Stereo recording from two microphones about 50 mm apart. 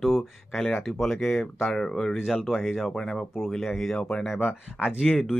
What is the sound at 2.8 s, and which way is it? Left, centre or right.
Speech, centre.